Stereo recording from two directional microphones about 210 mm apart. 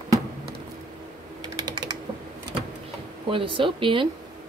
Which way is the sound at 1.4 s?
20° right (ahead or behind).